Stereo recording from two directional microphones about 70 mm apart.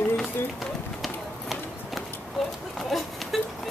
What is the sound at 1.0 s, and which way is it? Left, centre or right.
Run, centre.